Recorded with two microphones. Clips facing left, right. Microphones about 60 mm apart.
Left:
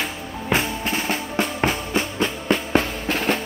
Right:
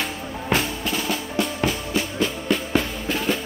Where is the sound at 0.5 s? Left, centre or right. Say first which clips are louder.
Left 1 dB; left.